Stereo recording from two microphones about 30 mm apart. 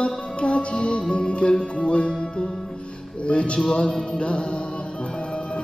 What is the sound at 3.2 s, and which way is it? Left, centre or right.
Music, left.